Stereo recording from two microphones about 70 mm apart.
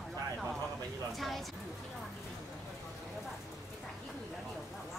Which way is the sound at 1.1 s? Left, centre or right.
Centre.